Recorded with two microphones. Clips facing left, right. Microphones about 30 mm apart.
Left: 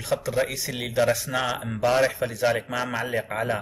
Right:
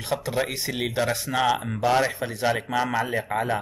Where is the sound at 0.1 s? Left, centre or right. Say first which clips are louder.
Left 1 dB; centre.